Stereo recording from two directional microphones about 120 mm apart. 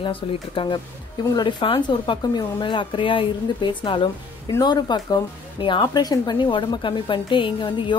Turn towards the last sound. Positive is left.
turn(degrees=45)  # may be behind; listen again after turning